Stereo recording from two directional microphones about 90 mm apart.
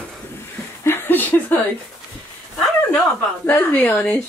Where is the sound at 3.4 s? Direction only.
15° left (ahead or behind).